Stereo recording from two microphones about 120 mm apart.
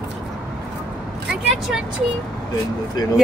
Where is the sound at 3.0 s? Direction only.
35° left (ahead or behind).